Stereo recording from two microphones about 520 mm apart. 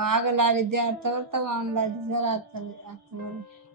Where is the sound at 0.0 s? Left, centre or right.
Right.